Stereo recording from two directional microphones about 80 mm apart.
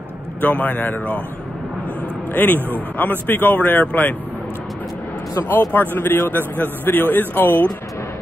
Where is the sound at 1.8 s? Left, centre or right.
Centre.